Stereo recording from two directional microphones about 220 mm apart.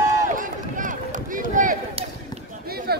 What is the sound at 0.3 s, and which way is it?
Run, 35° right (ahead or behind).